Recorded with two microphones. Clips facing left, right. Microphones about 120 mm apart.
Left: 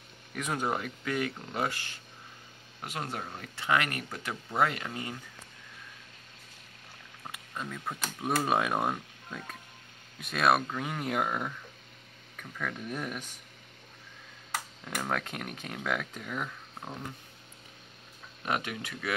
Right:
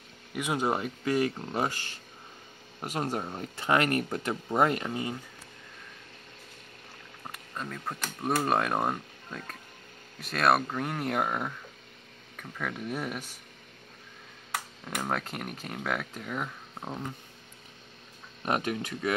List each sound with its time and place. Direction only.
0.4 s speech: 10° right (ahead or behind)
0.7 s speech: 25° right (ahead or behind)
3.2 s speech: 20° right (ahead or behind)
3.5 s speech: 40° right (ahead or behind)
4.8 s speech: 25° right (ahead or behind)
7.2 s speech: centre (ahead or behind)
15.0 s speech: 5° right (ahead or behind)
18.4 s speech: 35° right (ahead or behind)